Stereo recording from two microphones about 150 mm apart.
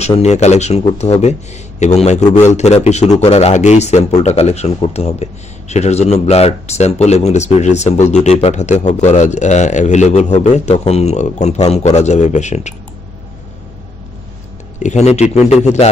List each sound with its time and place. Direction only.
0.2 s speech: 45° left (ahead or behind)
14.8 s speech: 50° left (ahead or behind)